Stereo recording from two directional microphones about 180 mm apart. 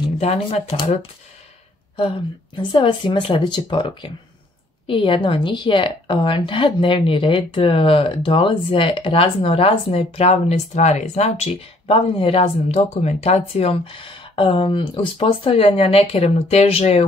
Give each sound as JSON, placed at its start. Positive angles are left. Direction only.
{"t": 0.2, "sound": "speech", "side_deg": 35}
{"t": 2.7, "sound": "a woman's voice", "side_deg": 30}